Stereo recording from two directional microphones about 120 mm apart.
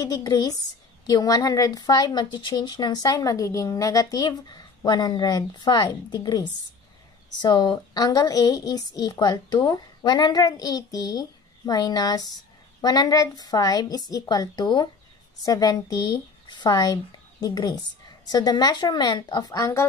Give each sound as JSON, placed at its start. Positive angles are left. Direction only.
{"t": 0.1, "sound": "a woman's voice", "side_deg": 30}
{"t": 7.4, "sound": "a woman's voice", "side_deg": 35}